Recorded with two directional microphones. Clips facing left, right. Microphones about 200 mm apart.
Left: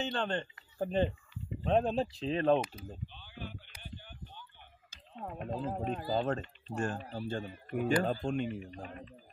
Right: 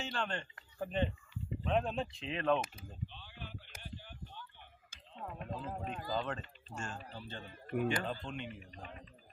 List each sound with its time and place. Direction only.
0.0 s speech: 35° left (ahead or behind)
3.1 s a sound: centre (ahead or behind)
5.2 s a man's voice: 40° left (ahead or behind)
6.7 s speech: 55° left (ahead or behind)
7.0 s a man's voice: 45° left (ahead or behind)